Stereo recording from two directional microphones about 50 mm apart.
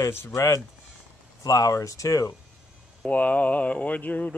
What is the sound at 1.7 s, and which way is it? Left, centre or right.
Speech, left.